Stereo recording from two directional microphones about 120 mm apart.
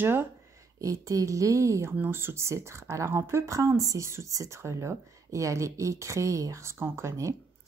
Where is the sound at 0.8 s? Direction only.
25° right (ahead or behind).